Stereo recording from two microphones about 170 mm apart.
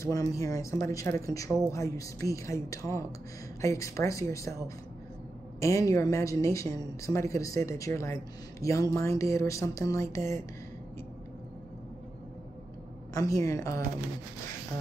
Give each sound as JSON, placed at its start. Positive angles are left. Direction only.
{"t": 0.0, "sound": "a woman's voice", "side_deg": 20}
{"t": 5.6, "sound": "a woman's voice", "side_deg": 20}
{"t": 13.1, "sound": "a woman's voice", "side_deg": 20}